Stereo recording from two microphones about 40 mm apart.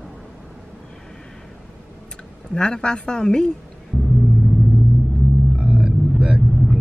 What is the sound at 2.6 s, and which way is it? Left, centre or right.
Speech, left.